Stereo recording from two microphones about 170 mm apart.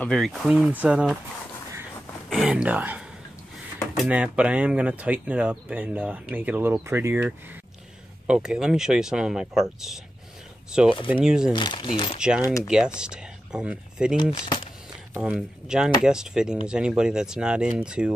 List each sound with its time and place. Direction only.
0.0 s speech: centre (ahead or behind)
2.2 s speech: centre (ahead or behind)
11.0 s speech: 30° left (ahead or behind)
11.2 s speech: 5° right (ahead or behind)
11.5 s speech: 25° left (ahead or behind)
12.6 s speech: 5° right (ahead or behind)
14.1 s speech: 30° left (ahead or behind)
15.2 s speech: 5° right (ahead or behind)